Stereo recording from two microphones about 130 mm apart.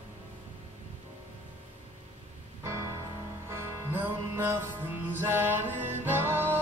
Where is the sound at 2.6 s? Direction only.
20° right (ahead or behind).